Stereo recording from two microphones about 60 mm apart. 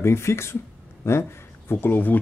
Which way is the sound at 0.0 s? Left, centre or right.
Left.